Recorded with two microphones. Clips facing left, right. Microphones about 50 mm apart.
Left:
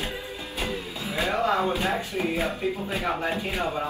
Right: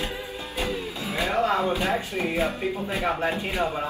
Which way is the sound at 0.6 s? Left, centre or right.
Right.